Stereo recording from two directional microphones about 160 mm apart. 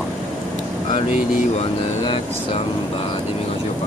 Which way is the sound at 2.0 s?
35° left (ahead or behind).